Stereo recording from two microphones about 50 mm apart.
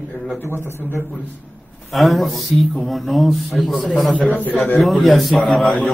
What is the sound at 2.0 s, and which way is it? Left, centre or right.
A man's voice, centre.